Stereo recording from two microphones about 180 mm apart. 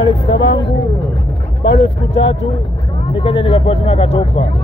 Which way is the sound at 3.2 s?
30° left (ahead or behind).